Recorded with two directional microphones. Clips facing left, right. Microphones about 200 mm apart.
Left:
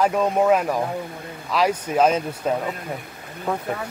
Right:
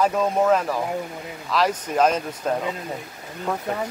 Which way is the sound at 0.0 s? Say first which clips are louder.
Left 1 dB; 10° left (ahead or behind).